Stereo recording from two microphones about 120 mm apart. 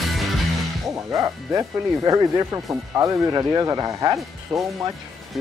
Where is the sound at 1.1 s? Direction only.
30° right (ahead or behind).